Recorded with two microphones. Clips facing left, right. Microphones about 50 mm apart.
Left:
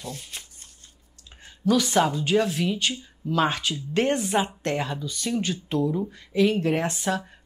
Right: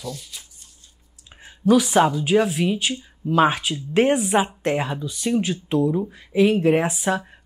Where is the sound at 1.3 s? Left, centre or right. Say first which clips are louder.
Right 5 dB; centre.